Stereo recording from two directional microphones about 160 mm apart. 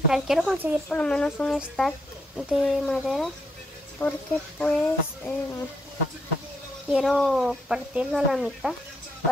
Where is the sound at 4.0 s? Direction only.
15° left (ahead or behind).